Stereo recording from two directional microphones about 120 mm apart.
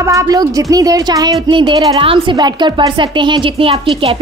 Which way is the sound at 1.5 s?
45° right (ahead or behind).